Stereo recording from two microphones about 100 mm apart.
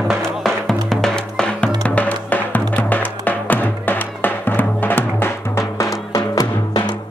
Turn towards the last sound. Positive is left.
turn(degrees=45)  # may be behind; listen again after turning